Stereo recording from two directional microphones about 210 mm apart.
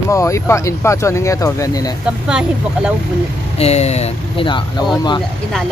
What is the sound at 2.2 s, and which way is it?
Speech, 5° right (ahead or behind).